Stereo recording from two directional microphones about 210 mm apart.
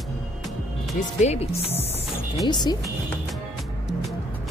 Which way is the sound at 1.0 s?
35° left (ahead or behind).